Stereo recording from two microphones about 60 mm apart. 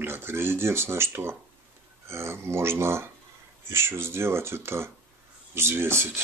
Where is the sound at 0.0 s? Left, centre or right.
Right.